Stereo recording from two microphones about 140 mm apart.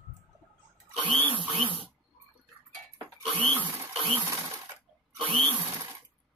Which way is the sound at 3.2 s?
40° right (ahead or behind).